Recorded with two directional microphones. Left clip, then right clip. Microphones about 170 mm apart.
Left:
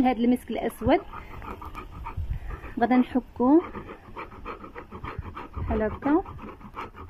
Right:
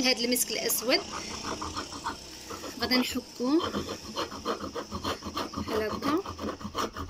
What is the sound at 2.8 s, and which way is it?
Speech, 45° left (ahead or behind).